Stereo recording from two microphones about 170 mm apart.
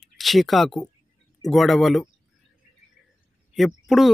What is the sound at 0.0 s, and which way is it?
Speech, centre (ahead or behind).